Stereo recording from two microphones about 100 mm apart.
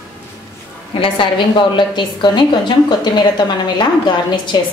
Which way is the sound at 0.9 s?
60° left (ahead or behind).